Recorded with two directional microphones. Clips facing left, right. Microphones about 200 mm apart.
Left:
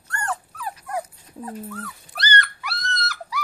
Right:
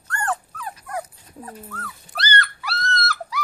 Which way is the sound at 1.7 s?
15° left (ahead or behind).